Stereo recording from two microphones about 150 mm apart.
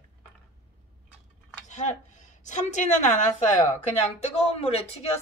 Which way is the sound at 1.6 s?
55° left (ahead or behind).